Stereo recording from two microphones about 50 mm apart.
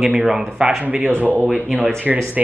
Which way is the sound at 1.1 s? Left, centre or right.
Right.